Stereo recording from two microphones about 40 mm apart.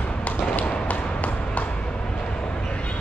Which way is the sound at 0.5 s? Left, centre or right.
Left.